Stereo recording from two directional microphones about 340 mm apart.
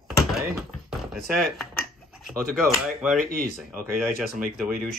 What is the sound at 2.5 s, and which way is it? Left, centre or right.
Speech, centre.